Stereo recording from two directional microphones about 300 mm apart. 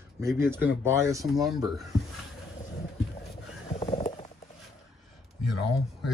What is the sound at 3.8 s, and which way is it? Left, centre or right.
Clip-clop, left.